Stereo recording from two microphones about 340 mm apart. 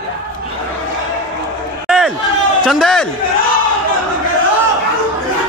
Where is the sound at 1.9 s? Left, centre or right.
Centre.